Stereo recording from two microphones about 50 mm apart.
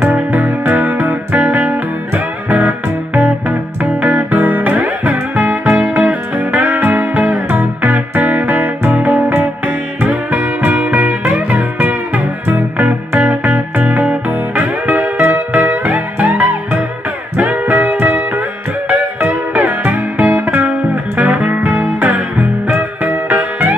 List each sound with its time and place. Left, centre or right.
0.0 s music: right
3.4 s music: right
12.4 s music: right